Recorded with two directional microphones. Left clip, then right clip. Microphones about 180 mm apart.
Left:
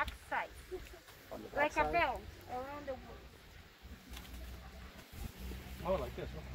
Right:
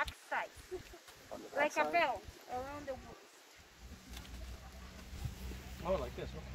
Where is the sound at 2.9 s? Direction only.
30° right (ahead or behind).